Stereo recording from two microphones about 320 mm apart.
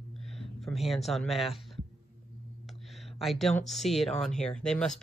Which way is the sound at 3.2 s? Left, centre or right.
Centre.